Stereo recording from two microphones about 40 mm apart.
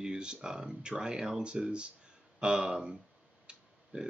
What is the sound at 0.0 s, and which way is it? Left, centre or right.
Speech, right.